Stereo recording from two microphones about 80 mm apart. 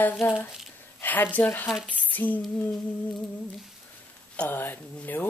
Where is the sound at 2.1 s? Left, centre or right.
Left.